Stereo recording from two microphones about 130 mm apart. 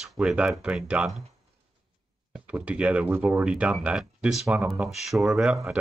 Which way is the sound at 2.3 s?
10° right (ahead or behind).